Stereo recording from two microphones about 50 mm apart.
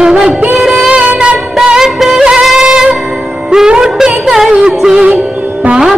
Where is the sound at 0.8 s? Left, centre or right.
Right.